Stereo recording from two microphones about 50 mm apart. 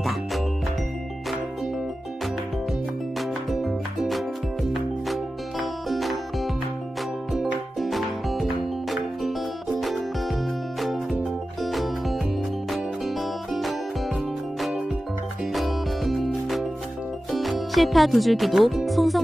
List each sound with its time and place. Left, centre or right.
3.2 s music: centre
4.7 s music: centre
9.8 s music: centre
15.5 s music: centre